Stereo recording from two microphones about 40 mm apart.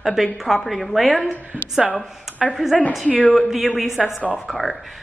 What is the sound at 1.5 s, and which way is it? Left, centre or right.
Speech, right.